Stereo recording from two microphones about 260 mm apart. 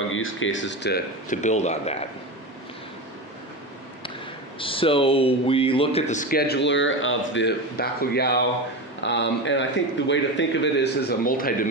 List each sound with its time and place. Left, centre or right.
0.1 s speech: left
4.6 s a man's voice: centre